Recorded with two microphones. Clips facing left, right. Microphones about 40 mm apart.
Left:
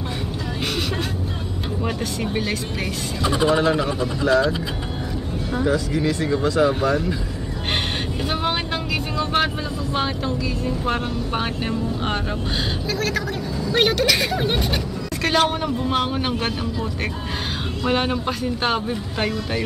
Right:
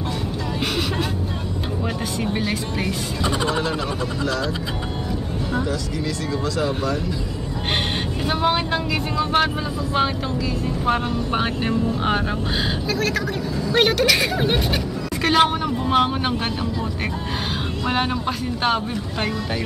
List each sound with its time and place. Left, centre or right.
2.2 s speech: centre
5.7 s speech: left
8.3 s speech: centre
10.6 s speech: centre
17.8 s speech: centre